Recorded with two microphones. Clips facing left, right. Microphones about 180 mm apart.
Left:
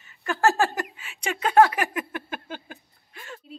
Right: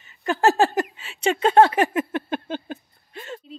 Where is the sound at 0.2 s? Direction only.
20° right (ahead or behind).